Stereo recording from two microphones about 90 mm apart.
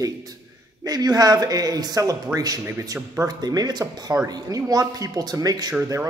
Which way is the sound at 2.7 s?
35° right (ahead or behind).